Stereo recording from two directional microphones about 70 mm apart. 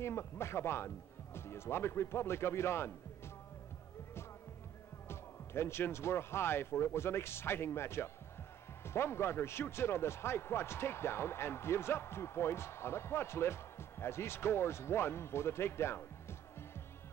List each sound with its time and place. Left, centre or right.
0.0 s a man's voice: left
5.0 s a man's voice: left